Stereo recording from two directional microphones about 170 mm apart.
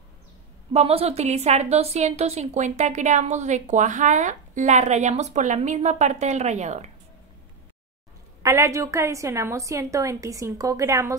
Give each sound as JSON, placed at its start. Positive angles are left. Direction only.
{"t": 0.7, "sound": "a woman's voice", "side_deg": -35}
{"t": 8.4, "sound": "a woman's voice", "side_deg": -15}